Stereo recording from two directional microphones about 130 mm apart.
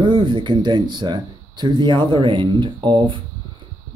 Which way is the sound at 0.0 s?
35° right (ahead or behind).